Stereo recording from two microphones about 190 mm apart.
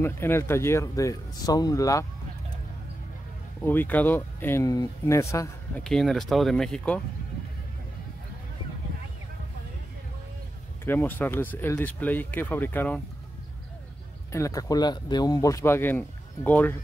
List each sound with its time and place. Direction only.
0.0 s speech: 15° left (ahead or behind)
3.6 s speech: 10° left (ahead or behind)
5.9 s speech: centre (ahead or behind)
10.9 s speech: 10° left (ahead or behind)
14.3 s speech: 15° left (ahead or behind)